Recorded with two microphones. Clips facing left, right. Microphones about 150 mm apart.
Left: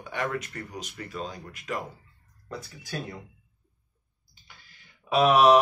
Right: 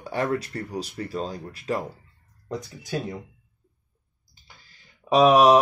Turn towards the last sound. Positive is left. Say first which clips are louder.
# right 2 dB
turn(degrees=-20)  # may be behind; listen again after turning